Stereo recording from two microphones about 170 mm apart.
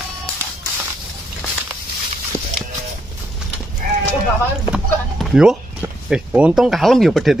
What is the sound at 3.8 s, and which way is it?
Livestock, 55° right (ahead or behind).